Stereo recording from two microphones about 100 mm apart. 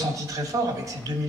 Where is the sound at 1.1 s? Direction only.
40° right (ahead or behind).